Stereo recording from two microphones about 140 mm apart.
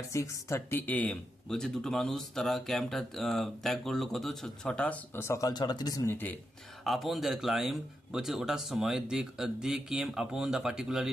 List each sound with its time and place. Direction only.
0.1 s speech: 20° left (ahead or behind)
6.0 s speech: 15° left (ahead or behind)
6.8 s speech: centre (ahead or behind)